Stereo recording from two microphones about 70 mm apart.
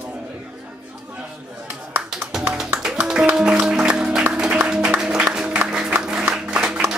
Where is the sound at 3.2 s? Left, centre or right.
Centre.